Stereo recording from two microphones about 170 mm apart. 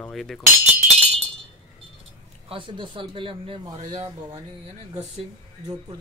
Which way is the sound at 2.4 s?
30° right (ahead or behind).